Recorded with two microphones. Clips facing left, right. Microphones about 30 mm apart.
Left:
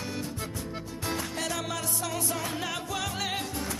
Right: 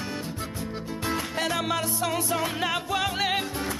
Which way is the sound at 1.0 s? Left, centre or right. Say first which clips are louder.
Right 4 dB; right.